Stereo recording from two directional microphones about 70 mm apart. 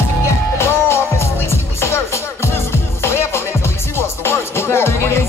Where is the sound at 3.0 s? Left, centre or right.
Left.